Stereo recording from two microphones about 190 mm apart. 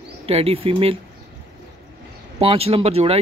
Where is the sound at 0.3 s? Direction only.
30° right (ahead or behind).